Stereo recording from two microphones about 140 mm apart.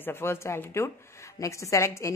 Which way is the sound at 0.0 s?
15° left (ahead or behind).